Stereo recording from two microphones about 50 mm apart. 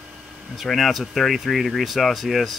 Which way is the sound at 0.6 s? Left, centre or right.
Centre.